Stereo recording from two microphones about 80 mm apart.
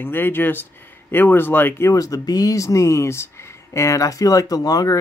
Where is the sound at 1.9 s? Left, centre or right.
Left.